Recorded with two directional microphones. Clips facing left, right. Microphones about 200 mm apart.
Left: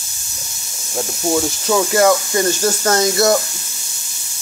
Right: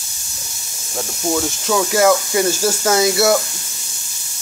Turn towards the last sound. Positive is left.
turn(degrees=-5)  # may be behind; listen again after turning